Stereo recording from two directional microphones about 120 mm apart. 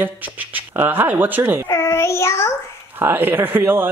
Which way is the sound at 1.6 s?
20° left (ahead or behind).